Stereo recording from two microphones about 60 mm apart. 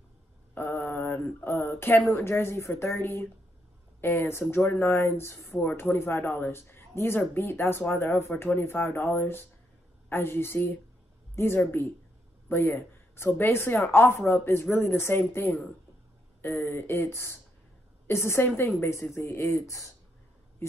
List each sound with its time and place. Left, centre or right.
0.6 s mantra: left
2.0 s speech: left
19.5 s speech: left